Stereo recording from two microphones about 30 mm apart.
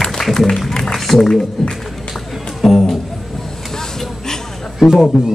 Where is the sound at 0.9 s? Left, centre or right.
Centre.